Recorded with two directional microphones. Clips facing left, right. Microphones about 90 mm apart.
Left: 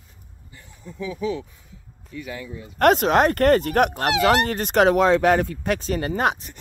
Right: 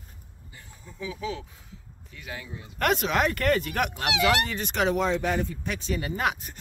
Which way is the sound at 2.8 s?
50° left (ahead or behind).